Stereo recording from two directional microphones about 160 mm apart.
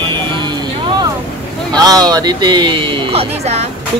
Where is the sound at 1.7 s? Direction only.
25° right (ahead or behind); by 3.6 s 40° right (ahead or behind).